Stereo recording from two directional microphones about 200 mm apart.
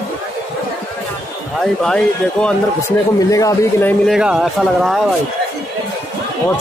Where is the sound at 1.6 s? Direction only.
5° left (ahead or behind).